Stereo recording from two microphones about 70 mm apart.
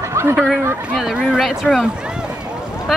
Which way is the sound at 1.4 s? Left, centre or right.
Centre.